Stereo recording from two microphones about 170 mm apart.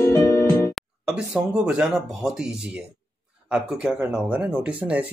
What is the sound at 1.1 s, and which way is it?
Speech, 5° right (ahead or behind).